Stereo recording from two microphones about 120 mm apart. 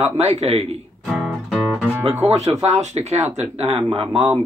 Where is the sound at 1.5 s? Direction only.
10° right (ahead or behind).